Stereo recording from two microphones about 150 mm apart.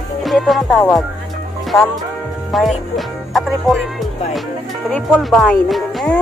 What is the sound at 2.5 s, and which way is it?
Speech, centre (ahead or behind).